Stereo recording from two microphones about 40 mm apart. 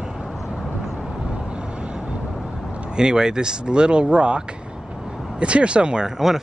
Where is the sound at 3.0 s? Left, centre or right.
Centre.